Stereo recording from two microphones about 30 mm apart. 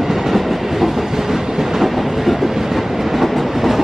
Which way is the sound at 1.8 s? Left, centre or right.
Centre.